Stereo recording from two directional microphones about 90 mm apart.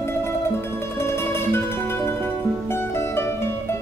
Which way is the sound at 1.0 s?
25° left (ahead or behind).